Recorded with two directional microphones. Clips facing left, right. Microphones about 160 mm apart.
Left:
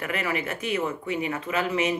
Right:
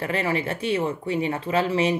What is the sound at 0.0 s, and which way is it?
Speech, 30° right (ahead or behind).